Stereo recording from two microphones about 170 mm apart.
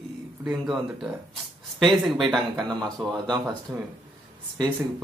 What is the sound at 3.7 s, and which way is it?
Speech, 20° right (ahead or behind).